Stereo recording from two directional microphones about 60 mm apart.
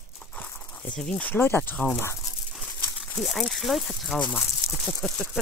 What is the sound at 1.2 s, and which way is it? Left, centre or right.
Speech, left.